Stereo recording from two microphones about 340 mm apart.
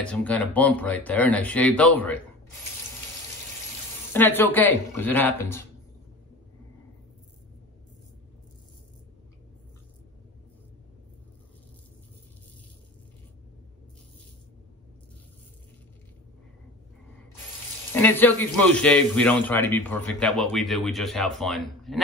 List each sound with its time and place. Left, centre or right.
0.0 s a man's voice: centre
4.1 s a man's voice: centre
17.9 s a man's voice: centre